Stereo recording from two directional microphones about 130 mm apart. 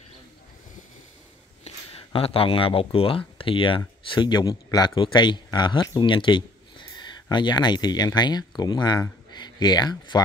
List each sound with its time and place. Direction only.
1.6 s speech: 50° left (ahead or behind); by 10.2 s 30° left (ahead or behind)